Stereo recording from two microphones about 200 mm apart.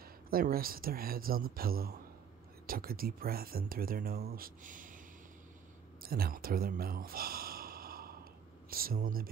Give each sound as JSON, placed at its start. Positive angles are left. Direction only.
{"t": 0.3, "sound": "speech", "side_deg": -45}
{"t": 6.0, "sound": "speech", "side_deg": -50}